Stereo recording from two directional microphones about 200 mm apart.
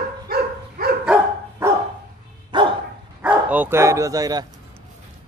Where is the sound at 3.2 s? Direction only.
10° right (ahead or behind).